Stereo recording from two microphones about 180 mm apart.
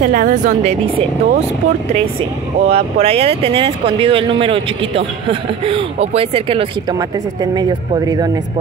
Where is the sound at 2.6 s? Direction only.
35° right (ahead or behind).